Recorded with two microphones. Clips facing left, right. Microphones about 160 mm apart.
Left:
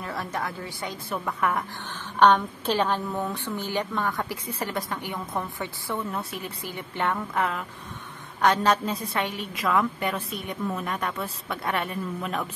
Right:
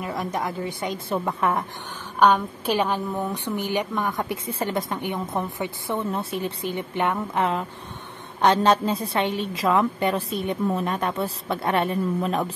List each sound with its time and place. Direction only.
0.0 s a woman's voice: 15° right (ahead or behind)
2.1 s a woman's voice: 10° right (ahead or behind); by 12.4 s 35° right (ahead or behind)